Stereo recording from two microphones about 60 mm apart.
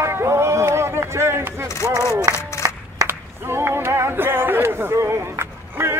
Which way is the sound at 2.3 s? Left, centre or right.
Left.